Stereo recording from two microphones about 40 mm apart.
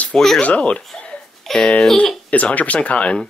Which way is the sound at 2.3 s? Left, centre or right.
Left.